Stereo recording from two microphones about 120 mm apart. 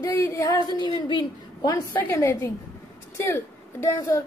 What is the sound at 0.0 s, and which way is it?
A woman's voice, 25° left (ahead or behind).